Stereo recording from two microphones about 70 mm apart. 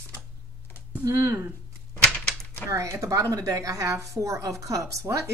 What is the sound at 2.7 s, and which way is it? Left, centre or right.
A woman's voice, right.